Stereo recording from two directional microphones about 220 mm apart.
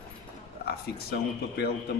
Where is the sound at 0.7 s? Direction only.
45° left (ahead or behind).